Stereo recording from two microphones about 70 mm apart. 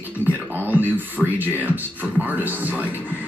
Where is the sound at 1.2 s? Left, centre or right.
Centre.